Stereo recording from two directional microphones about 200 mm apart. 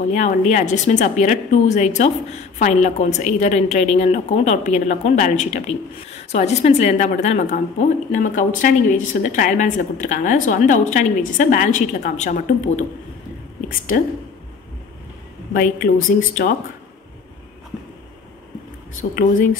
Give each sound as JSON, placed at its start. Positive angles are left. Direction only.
{"t": 0.1, "sound": "a woman's voice", "side_deg": 35}
{"t": 15.5, "sound": "speech", "side_deg": 45}